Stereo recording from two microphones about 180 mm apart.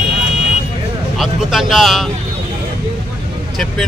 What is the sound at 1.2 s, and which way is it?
Speech, centre (ahead or behind).